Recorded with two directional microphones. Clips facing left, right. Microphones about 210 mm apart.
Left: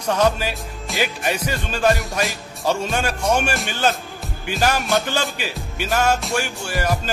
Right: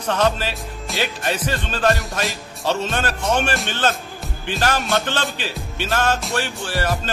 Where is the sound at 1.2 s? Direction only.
10° left (ahead or behind).